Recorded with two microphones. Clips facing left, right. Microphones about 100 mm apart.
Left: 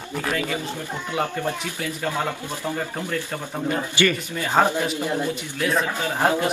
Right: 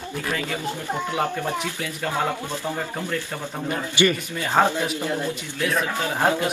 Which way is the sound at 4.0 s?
15° right (ahead or behind).